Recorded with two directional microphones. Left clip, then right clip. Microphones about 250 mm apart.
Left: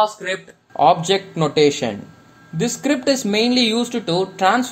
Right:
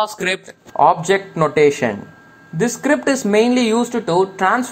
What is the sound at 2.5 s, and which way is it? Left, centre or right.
Speech, centre.